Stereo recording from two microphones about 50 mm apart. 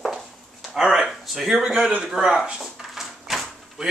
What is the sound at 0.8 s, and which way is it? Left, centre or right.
Speech, centre.